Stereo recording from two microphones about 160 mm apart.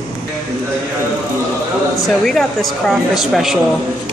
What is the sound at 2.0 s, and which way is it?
A woman's voice, centre (ahead or behind).